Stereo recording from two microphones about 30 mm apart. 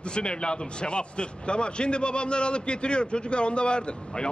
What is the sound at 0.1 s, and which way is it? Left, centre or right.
A man's voice, left.